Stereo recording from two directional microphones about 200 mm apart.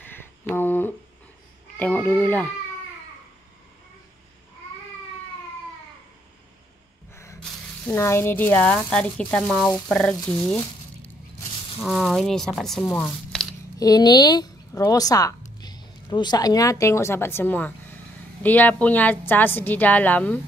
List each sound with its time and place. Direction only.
0.0 s a sound: 10° left (ahead or behind)
1.8 s a woman's voice: 5° left (ahead or behind)
7.8 s a woman's voice: 15° left (ahead or behind)
10.2 s a woman's voice: 15° left (ahead or behind)
11.8 s speech: centre (ahead or behind)
13.7 s a woman's voice: 20° left (ahead or behind)